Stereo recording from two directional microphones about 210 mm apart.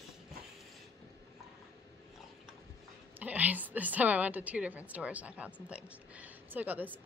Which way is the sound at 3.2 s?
10° right (ahead or behind).